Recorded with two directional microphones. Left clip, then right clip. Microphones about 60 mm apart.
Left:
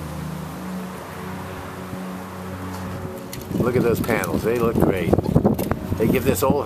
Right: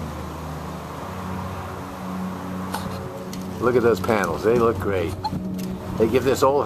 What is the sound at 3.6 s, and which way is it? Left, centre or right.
Speech, centre.